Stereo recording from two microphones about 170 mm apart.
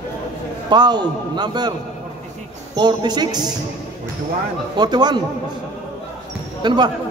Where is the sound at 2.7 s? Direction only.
25° right (ahead or behind).